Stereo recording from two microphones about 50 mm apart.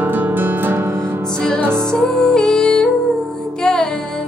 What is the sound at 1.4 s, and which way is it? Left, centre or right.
Music, centre.